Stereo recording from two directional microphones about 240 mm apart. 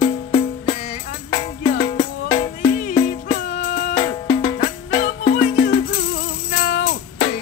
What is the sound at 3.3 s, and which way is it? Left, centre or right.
Music, left.